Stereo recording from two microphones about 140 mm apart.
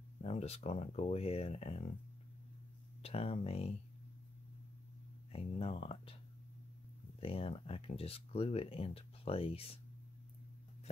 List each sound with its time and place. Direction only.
0.2 s speech: 45° left (ahead or behind)
3.0 s speech: 45° left (ahead or behind)
5.3 s speech: 45° left (ahead or behind)
7.2 s speech: 45° left (ahead or behind)